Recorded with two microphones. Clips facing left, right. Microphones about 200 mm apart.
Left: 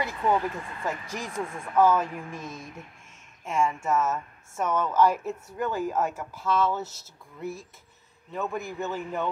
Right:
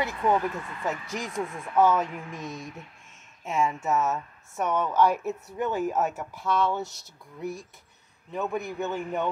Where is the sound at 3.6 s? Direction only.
20° right (ahead or behind).